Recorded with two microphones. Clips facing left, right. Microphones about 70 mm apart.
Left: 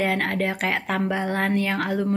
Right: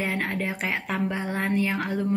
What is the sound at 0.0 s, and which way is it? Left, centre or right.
A woman's voice, left.